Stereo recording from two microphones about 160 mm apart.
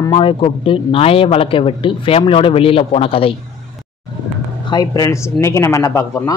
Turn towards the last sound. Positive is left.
turn(degrees=15)  # may be behind; listen again after turning